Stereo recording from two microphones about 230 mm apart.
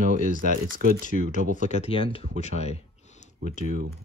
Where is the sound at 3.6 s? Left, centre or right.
Right.